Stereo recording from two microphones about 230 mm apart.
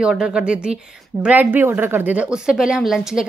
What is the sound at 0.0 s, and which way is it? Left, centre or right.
A woman's voice, centre.